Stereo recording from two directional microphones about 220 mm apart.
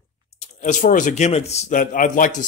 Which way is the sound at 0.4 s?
35° left (ahead or behind).